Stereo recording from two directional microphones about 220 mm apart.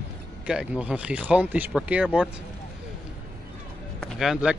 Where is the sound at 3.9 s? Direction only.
Centre (ahead or behind).